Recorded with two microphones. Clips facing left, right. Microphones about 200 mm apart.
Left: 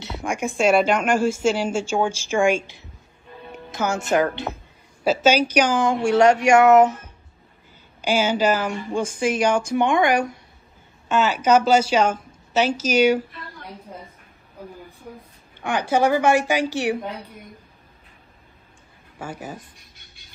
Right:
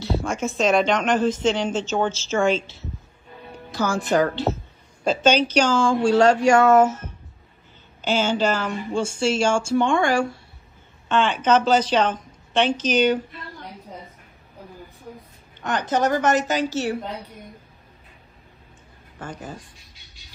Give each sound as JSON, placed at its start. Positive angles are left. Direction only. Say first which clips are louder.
{"t": 0.0, "sound": "speech", "louder": "right 2 dB", "side_deg": 15}
{"t": 5.0, "sound": "speech", "louder": "left 1 dB", "side_deg": 10}
{"t": 11.1, "sound": "speech", "louder": "left 1 dB", "side_deg": 5}
{"t": 15.6, "sound": "speech", "louder": "left 2 dB", "side_deg": 10}
{"t": 19.1, "sound": "speech", "louder": "left 2 dB", "side_deg": 10}
{"t": 19.8, "sound": "beatboxing", "louder": "even", "side_deg": 55}